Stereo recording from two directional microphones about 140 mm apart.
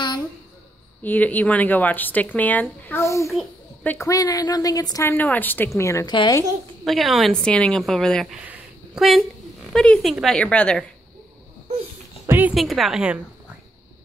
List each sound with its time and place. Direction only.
1.0 s speech: 10° left (ahead or behind)
4.1 s speech: 25° left (ahead or behind)
5.1 s a woman's voice: 10° left (ahead or behind); by 6.4 s 30° left (ahead or behind)
6.8 s a woman's voice: centre (ahead or behind)
8.4 s a sound: 10° right (ahead or behind)
9.7 s a woman's voice: 5° left (ahead or behind)
12.3 s music: 15° right (ahead or behind)
12.5 s a woman's voice: centre (ahead or behind)